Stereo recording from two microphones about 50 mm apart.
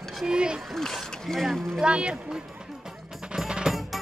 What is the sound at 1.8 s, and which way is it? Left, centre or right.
Music, right.